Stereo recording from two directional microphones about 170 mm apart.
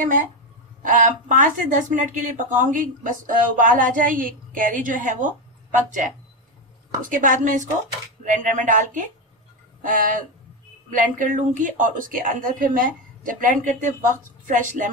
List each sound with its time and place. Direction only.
0.0 s speech: 50° right (ahead or behind)